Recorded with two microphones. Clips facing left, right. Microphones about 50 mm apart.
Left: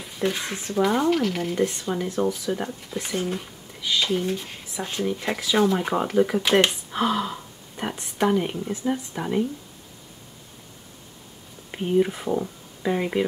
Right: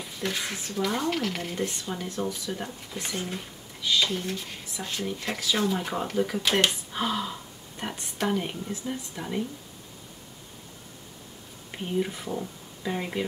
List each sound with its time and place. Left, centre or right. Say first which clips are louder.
0.0 s speech: left 5 dB; centre
1.1 s speech: left 6 dB; centre
2.9 s speech: left 6 dB; centre
8.8 s speech: left 7 dB; left
11.7 s speech: left 7 dB; centre